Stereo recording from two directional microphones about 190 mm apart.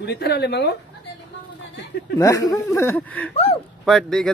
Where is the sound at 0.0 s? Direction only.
60° left (ahead or behind).